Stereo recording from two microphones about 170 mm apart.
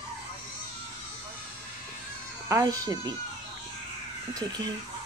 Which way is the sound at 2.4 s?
20° right (ahead or behind).